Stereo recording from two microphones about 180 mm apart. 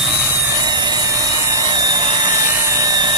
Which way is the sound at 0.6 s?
25° right (ahead or behind).